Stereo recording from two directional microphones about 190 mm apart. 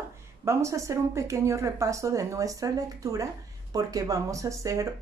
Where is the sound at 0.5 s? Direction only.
15° right (ahead or behind).